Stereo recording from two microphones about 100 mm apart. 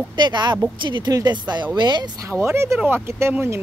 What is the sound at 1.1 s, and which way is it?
Speech, 40° right (ahead or behind).